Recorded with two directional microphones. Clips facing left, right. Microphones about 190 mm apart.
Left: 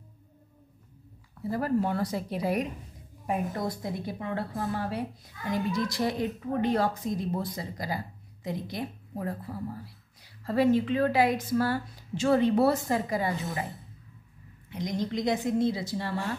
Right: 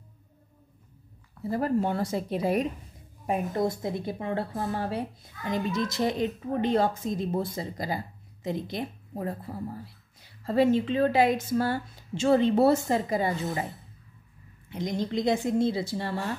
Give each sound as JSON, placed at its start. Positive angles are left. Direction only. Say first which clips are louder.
{"t": 1.5, "sound": "speech", "louder": "right 1 dB", "side_deg": -25}
{"t": 14.7, "sound": "speech", "louder": "right 1 dB", "side_deg": -25}